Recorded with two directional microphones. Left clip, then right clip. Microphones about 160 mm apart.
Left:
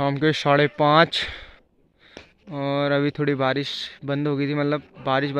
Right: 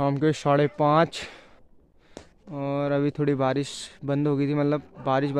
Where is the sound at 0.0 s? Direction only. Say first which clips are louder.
Left 3 dB; 5° right (ahead or behind).